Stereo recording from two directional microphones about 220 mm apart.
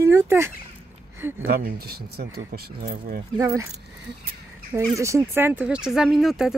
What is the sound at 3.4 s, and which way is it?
Speech, 15° right (ahead or behind).